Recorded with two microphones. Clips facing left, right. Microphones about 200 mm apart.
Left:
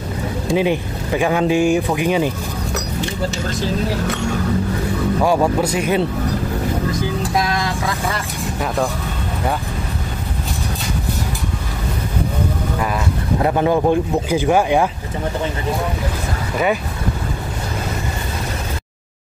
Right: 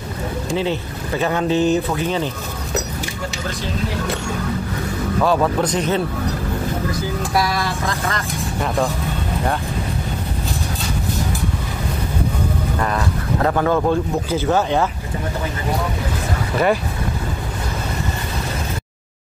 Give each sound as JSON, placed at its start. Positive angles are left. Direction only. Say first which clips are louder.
{"t": 0.6, "sound": "speech", "louder": "left 5 dB", "side_deg": 15}
{"t": 5.2, "sound": "speech", "louder": "even", "side_deg": 15}
{"t": 7.3, "sound": "vehicle", "louder": "right 1 dB", "side_deg": 15}
{"t": 13.4, "sound": "speech", "louder": "left 1 dB", "side_deg": 20}